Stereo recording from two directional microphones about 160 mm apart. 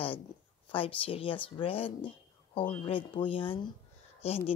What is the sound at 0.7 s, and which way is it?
Speech, 35° left (ahead or behind).